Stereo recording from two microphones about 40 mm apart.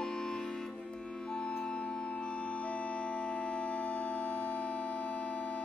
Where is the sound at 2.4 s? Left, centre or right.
Left.